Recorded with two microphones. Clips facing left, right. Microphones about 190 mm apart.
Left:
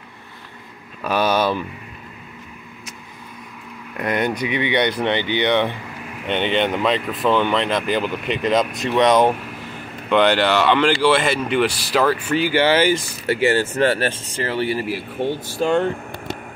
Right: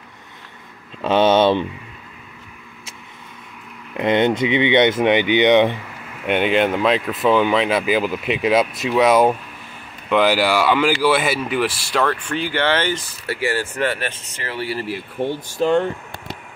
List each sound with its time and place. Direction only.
1.0 s speech: 25° right (ahead or behind)
3.9 s speech: 25° right (ahead or behind); by 13.0 s 10° left (ahead or behind)
13.3 s speech: 25° left (ahead or behind)